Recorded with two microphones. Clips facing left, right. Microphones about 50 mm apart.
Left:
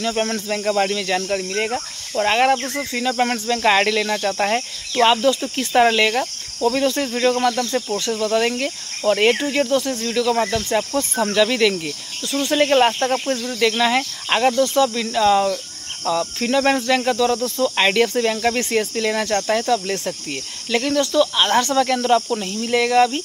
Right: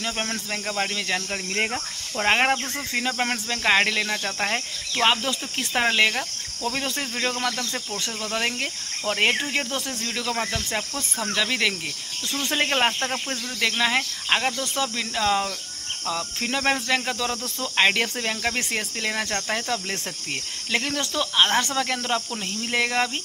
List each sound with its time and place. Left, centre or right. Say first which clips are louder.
0.0 s speech: left 7 dB; centre
2.2 s cricket: left 4 dB; right
3.2 s speech: left 7 dB; centre
5.0 s cricket: left 7 dB; centre
7.3 s speech: left 8 dB; centre
8.1 s cricket: left 9 dB; centre
9.3 s cricket: left 7 dB; centre
11.3 s cricket: left 7 dB; centre
19.7 s cricket: left 8 dB; centre